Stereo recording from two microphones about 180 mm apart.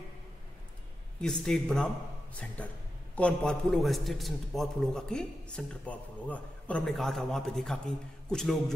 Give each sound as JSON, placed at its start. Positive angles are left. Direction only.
{"t": 1.2, "sound": "a man's voice", "side_deg": 5}